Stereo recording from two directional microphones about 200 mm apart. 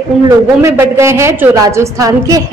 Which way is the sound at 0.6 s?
15° right (ahead or behind).